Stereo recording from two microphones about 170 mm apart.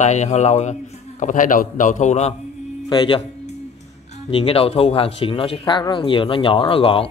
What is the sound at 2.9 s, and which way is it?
Speech, 25° left (ahead or behind).